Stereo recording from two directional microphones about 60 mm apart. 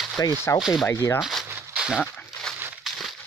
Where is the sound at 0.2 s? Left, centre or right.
Left.